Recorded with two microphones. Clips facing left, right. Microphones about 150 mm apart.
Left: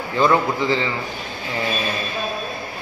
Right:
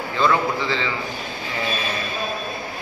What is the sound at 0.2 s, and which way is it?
Speech, 15° left (ahead or behind).